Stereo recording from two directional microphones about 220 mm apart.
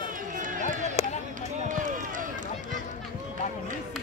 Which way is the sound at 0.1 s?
35° right (ahead or behind).